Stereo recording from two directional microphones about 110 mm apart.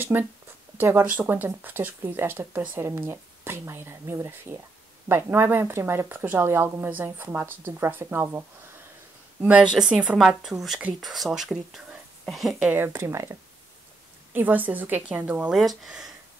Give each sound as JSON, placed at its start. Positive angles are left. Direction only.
{"t": 0.0, "sound": "speech", "side_deg": -20}
{"t": 9.4, "sound": "speech", "side_deg": -10}
{"t": 12.7, "sound": "a woman's voice", "side_deg": -20}
{"t": 15.6, "sound": "speech", "side_deg": 0}